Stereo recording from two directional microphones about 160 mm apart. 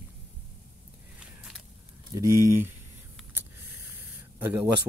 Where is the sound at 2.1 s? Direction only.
20° right (ahead or behind).